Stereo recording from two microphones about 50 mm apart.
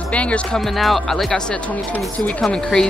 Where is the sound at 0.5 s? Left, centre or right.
Centre.